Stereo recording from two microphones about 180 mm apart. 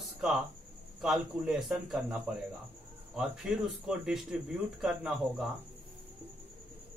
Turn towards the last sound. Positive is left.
turn(degrees=0)  # may be behind; listen again after turning